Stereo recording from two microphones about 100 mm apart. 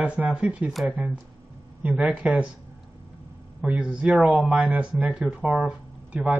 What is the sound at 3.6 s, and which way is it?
Speech, 10° right (ahead or behind).